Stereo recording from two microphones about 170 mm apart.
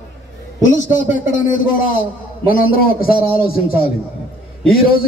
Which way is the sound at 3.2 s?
35° right (ahead or behind).